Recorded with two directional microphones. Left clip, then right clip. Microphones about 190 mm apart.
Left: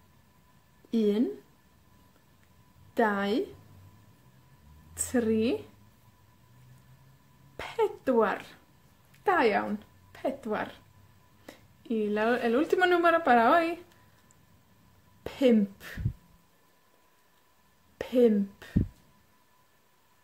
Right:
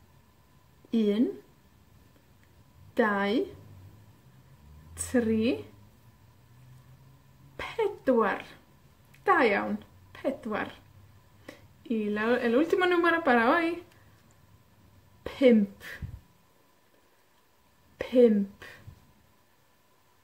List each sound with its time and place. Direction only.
0.9 s a woman's voice: 20° left (ahead or behind)
2.9 s a woman's voice: 20° left (ahead or behind)
4.9 s a woman's voice: 20° left (ahead or behind)
7.5 s a sound: 20° left (ahead or behind)
9.2 s a woman's voice: 20° left (ahead or behind)
15.2 s a woman's voice: 20° left (ahead or behind)
17.9 s speech: 25° left (ahead or behind)